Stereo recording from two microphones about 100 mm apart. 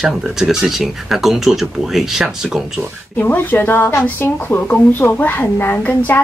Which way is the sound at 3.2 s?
20° left (ahead or behind).